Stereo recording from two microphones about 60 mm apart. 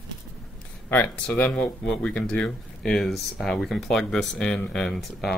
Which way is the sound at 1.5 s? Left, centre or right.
Centre.